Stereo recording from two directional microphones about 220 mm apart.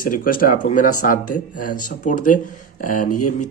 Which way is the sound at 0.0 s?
40° left (ahead or behind).